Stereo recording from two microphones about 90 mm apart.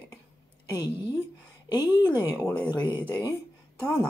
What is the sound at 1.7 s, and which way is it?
Speech, 50° left (ahead or behind).